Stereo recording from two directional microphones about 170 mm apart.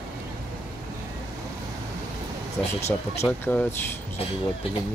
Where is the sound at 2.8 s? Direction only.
15° left (ahead or behind).